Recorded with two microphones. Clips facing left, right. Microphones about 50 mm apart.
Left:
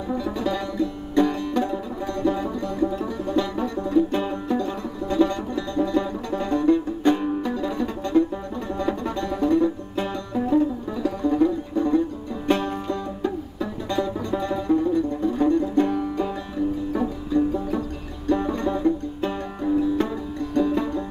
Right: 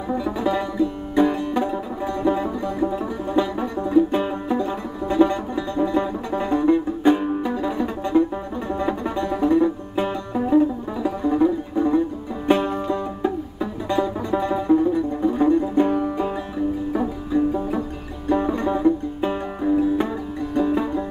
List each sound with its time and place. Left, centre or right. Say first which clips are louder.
0.1 s music: right 3 dB; centre